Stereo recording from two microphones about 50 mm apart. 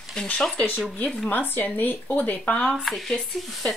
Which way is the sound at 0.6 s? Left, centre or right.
Left.